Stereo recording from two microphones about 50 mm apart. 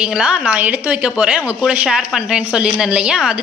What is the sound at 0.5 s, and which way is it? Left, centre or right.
Speech, right.